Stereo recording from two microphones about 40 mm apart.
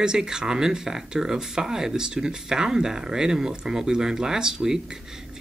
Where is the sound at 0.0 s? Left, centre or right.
Centre.